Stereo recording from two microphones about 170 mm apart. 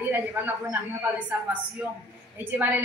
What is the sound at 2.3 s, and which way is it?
Speech, 10° right (ahead or behind).